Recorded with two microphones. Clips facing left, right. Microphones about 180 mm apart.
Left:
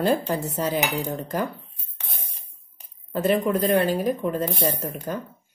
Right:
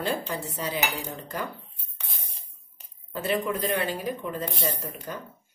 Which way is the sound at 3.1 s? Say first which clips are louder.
Left 6 dB; 45° left (ahead or behind).